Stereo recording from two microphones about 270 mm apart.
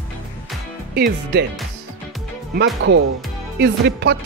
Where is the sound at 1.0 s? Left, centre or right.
Right.